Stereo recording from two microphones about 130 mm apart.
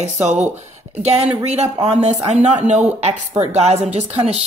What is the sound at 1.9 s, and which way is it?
A woman's voice, 60° right (ahead or behind).